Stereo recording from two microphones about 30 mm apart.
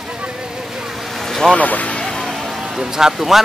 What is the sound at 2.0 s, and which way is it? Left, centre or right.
Music, left.